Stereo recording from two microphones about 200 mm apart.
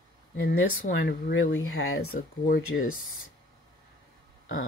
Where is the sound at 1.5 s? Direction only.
90° left.